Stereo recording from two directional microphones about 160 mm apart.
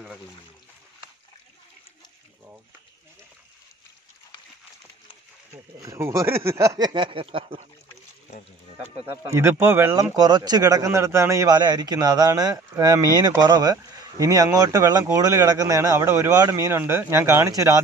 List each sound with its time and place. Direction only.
5.8 s a man's voice: 20° right (ahead or behind)
9.0 s a man's voice: 15° right (ahead or behind)